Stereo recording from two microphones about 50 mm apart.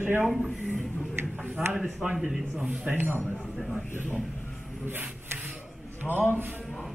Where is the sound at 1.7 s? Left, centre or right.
Centre.